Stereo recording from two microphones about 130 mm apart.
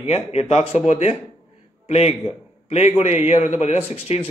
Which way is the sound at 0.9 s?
60° left (ahead or behind).